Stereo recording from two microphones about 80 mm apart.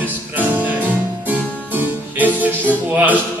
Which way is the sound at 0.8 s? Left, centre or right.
Right.